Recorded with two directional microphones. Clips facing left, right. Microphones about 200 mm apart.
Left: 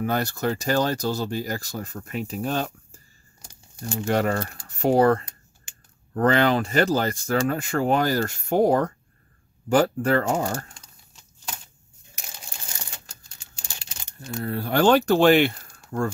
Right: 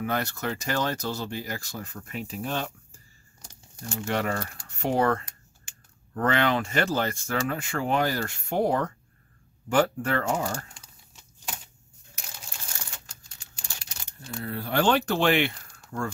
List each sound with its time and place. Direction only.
0.0 s speech: 35° left (ahead or behind)
3.9 s speech: 40° left (ahead or behind)
14.2 s speech: 45° left (ahead or behind)